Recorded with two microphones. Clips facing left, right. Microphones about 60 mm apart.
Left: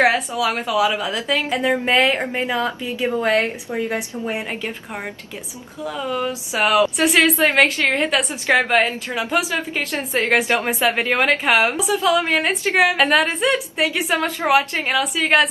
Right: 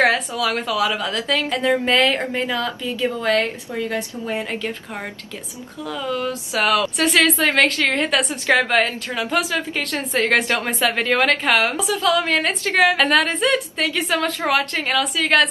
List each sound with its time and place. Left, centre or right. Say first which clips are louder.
0.3 s a woman's voice: left 1 dB; centre
5.9 s a woman's voice: left 1 dB; left